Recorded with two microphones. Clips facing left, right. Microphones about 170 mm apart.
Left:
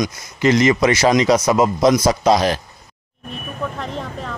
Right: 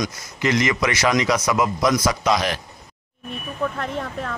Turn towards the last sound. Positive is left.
turn(degrees=0)  # may be behind; listen again after turning